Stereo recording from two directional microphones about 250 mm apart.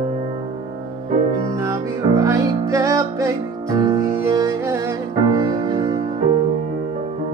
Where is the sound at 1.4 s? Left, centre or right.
Centre.